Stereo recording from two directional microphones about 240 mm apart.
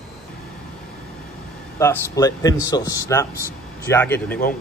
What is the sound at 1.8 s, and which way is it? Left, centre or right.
A man's voice, centre.